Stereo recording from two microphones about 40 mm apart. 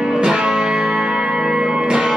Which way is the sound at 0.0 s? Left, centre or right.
Centre.